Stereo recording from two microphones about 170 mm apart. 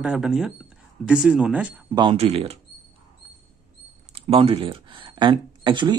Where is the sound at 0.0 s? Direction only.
5° right (ahead or behind).